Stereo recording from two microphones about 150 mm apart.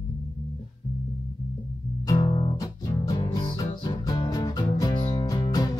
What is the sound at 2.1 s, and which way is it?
Music, 25° left (ahead or behind).